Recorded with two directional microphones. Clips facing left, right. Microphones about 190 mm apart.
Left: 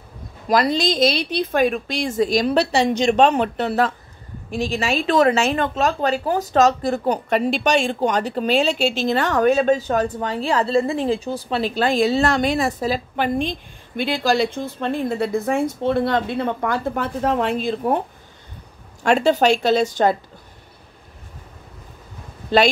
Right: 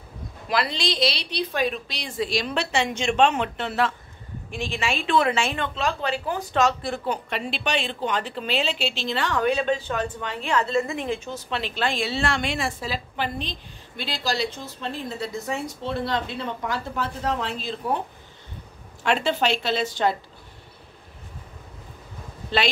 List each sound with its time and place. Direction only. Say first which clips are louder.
0.5 s a woman's voice: left 8 dB; 45° left (ahead or behind)
19.0 s a woman's voice: left 7 dB; 45° left (ahead or behind)